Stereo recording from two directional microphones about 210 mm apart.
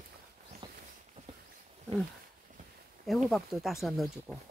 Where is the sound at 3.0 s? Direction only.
Centre (ahead or behind).